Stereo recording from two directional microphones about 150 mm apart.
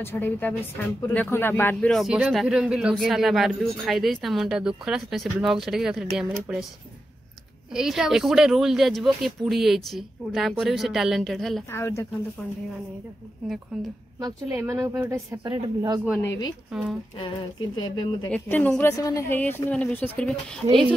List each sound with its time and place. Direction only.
0.0 s a man's voice: 15° left (ahead or behind); by 6.7 s 5° right (ahead or behind)
7.7 s a man's voice: 5° right (ahead or behind)
11.7 s speech: 15° left (ahead or behind)
13.7 s a man's voice: centre (ahead or behind)
14.2 s a woman's voice: 20° right (ahead or behind)
16.7 s a man's voice: 5° right (ahead or behind)
17.2 s speech: 30° left (ahead or behind)
18.3 s speech: 10° left (ahead or behind)
18.9 s speech: 20° left (ahead or behind); by 20.3 s 5° left (ahead or behind)